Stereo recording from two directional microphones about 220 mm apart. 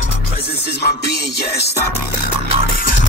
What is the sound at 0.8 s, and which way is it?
Music, 50° left (ahead or behind).